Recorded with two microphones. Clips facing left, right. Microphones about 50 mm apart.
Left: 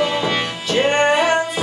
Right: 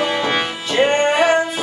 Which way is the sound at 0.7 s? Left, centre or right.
Centre.